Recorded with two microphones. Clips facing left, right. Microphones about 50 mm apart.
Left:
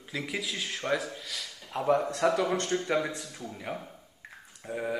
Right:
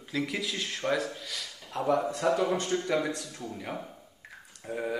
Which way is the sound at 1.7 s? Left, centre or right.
Left.